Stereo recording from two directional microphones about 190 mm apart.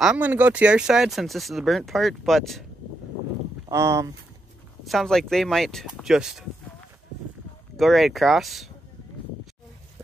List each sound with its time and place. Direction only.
0.0 s speech: 5° right (ahead or behind)
3.6 s speech: 15° right (ahead or behind)
4.8 s speech: centre (ahead or behind)
7.7 s speech: centre (ahead or behind)